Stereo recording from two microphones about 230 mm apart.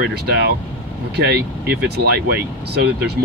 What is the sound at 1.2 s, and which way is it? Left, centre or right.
Speech, right.